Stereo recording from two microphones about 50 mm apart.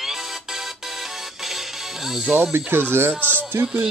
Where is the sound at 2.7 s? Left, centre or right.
Right.